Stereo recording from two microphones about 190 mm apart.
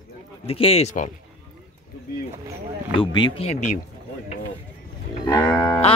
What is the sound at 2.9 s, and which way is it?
Speech, 25° left (ahead or behind).